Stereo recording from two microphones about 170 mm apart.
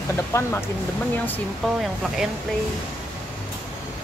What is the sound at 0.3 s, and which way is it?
Speech, 15° left (ahead or behind).